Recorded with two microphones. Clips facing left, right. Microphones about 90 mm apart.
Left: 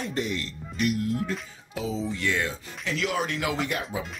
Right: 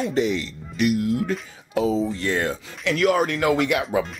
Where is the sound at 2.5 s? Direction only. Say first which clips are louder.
Right 7 dB; 55° right (ahead or behind).